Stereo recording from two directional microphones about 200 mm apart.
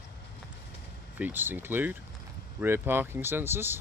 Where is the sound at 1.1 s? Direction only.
10° right (ahead or behind).